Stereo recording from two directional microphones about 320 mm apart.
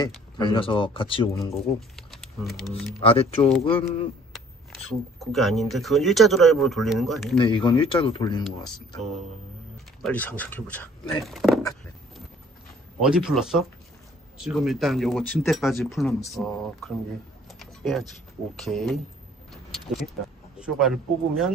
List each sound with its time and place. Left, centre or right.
0.0 s speech: centre
1.5 s speech: centre
3.0 s speech: centre
4.3 s speech: centre
7.3 s speech: centre
8.5 s speech: centre
13.0 s speech: centre
17.5 s keys jangling: centre
18.6 s speech: centre
20.5 s speech: centre